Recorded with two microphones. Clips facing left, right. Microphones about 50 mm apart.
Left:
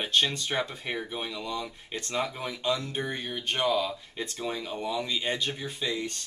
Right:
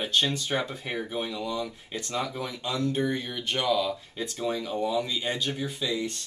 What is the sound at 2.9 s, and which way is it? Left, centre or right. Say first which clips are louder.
Speech: right 4 dB; left.